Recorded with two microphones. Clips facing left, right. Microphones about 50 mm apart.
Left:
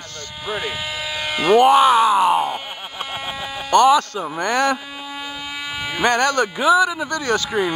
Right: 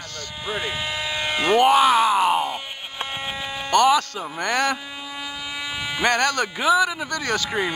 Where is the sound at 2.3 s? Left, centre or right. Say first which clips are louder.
Left 3 dB; centre.